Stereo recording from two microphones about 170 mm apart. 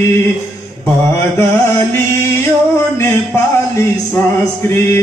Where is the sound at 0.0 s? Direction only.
15° left (ahead or behind).